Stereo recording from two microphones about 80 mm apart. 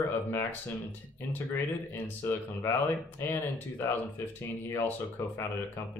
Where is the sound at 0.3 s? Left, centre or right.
Left.